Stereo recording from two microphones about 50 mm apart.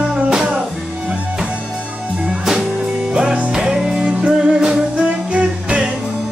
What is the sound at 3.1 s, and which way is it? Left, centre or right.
Music, centre.